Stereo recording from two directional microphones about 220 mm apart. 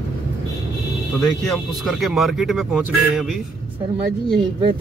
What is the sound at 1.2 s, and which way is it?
Speech, centre (ahead or behind).